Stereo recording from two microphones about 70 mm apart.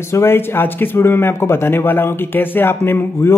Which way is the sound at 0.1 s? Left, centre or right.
Left.